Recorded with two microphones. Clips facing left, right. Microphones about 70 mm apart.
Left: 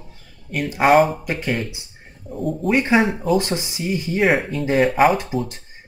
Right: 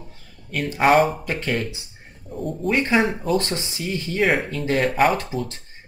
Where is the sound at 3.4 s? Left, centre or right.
Centre.